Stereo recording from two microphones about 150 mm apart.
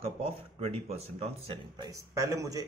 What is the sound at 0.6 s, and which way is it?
Speech, 45° right (ahead or behind).